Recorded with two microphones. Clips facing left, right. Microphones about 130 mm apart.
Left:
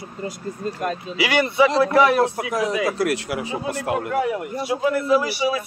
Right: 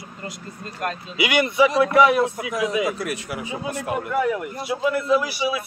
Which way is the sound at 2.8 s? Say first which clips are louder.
Left 4 dB; 90° left.